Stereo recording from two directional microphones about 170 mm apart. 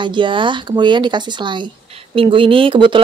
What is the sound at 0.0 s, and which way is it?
Speech, 30° right (ahead or behind).